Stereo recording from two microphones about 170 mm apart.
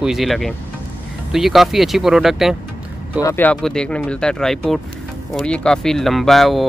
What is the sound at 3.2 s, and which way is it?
Speech, 15° left (ahead or behind).